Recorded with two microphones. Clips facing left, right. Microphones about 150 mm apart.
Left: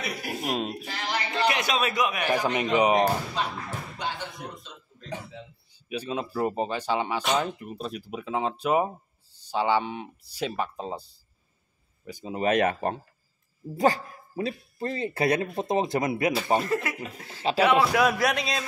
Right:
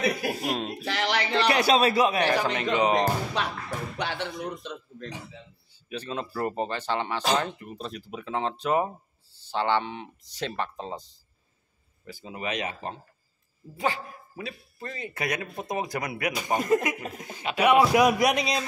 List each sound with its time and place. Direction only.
0.4 s speech: 5° left (ahead or behind)
0.8 s a sound: 90° right
1.5 s a man's voice: 35° right (ahead or behind)
2.4 s speech: 15° left (ahead or behind)
3.4 s a man's voice: 70° right (ahead or behind)
5.9 s speech: 10° left (ahead or behind)
12.4 s speech: 50° left (ahead or behind)
13.7 s speech: 40° left (ahead or behind); by 16.3 s 25° left (ahead or behind)
16.3 s speech: 15° right (ahead or behind)
17.4 s speech: 30° left (ahead or behind)
17.9 s a man's voice: 20° right (ahead or behind)